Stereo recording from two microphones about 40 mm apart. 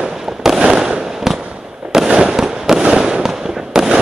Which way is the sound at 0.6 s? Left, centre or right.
Right.